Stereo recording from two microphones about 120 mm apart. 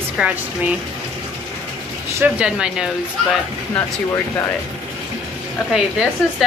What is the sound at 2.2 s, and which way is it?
Speech, 5° right (ahead or behind).